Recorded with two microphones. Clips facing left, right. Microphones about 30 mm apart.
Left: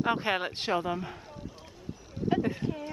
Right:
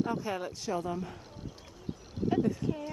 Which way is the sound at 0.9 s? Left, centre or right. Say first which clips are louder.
Left 2 dB; left.